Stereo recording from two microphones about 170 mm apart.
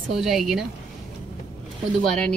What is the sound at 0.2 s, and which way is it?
Speech, centre (ahead or behind).